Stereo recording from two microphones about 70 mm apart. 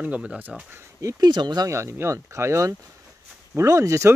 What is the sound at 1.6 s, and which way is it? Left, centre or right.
Speech, right.